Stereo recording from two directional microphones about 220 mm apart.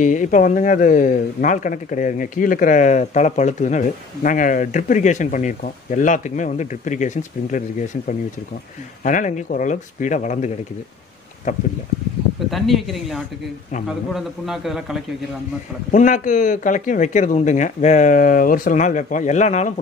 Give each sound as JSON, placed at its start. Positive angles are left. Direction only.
{"t": 0.0, "sound": "speech", "side_deg": 35}
{"t": 9.0, "sound": "speech", "side_deg": 35}
{"t": 12.4, "sound": "a man's voice", "side_deg": 0}
{"t": 15.9, "sound": "speech", "side_deg": 35}